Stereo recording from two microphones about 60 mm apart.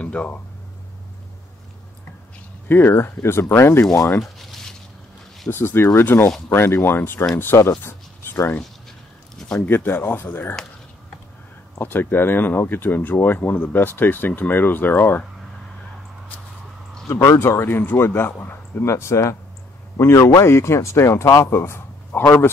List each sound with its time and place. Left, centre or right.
0.0 s a sound: centre
2.7 s speech: left
4.2 s a sound: centre
5.5 s speech: left
9.6 s speech: left
11.8 s speech: left
17.1 s speech: left
17.5 s speech: left